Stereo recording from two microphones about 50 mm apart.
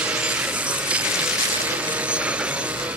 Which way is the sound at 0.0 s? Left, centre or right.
Right.